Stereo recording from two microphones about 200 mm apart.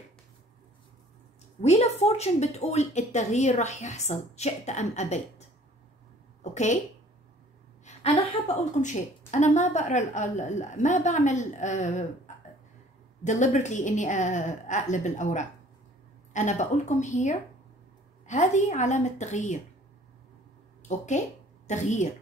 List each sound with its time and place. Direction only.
1.6 s a woman's voice: 35° left (ahead or behind)
6.4 s speech: 35° left (ahead or behind)
7.8 s a sound: 30° left (ahead or behind)
8.8 s a woman's voice: 35° left (ahead or behind)
13.2 s a woman's voice: 35° left (ahead or behind)
20.9 s a woman's voice: 35° left (ahead or behind)